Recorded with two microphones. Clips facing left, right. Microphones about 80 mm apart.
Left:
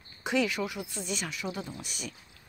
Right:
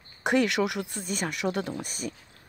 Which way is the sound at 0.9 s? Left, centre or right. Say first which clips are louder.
Right 4 dB; right.